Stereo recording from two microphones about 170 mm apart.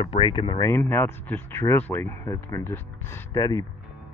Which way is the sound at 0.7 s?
15° left (ahead or behind).